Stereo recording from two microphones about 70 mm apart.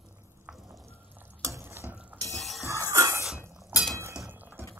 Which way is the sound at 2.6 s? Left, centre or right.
Right.